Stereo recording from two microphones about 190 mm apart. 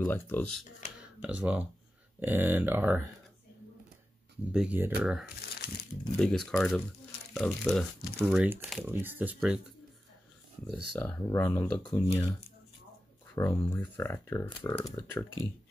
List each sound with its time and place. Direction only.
0.0 s speech: 10° left (ahead or behind)
1.0 s speech: 5° right (ahead or behind)
4.5 s speech: 5° right (ahead or behind)
5.5 s crumpling: 55° left (ahead or behind)
6.1 s speech: 5° left (ahead or behind)
10.7 s speech: 5° left (ahead or behind)
13.7 s speech: 15° left (ahead or behind)
14.5 s speech: 25° left (ahead or behind)
14.8 s speech: 10° left (ahead or behind)